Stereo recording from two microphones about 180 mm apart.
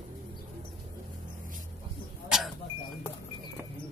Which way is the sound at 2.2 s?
Centre (ahead or behind).